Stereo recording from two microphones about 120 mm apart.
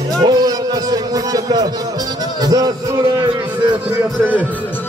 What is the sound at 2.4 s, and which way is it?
Speech, 35° right (ahead or behind).